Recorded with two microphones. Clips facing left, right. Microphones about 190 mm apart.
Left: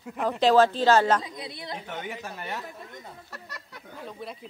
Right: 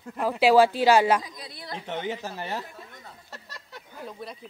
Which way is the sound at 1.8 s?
25° right (ahead or behind).